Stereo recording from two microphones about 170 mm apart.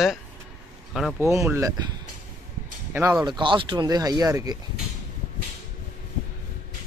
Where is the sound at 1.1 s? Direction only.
15° right (ahead or behind).